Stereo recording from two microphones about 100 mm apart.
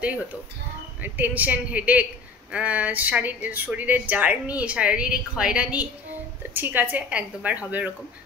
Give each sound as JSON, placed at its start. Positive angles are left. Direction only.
{"t": 1.0, "sound": "a woman's voice", "side_deg": -20}